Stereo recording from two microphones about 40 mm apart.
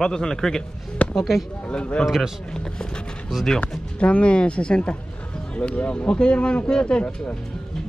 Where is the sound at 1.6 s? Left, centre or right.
Left.